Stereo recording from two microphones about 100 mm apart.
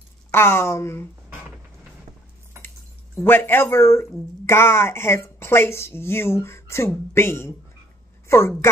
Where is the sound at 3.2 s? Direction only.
20° left (ahead or behind).